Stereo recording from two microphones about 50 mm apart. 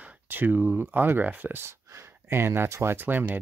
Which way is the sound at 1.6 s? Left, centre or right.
Right.